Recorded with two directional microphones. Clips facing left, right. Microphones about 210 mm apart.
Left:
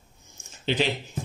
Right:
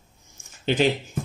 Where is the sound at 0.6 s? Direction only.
50° right (ahead or behind).